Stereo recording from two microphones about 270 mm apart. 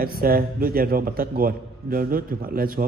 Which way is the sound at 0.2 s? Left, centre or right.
Right.